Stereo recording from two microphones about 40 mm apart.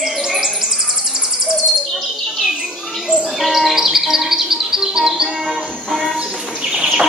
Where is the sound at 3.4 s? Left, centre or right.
Centre.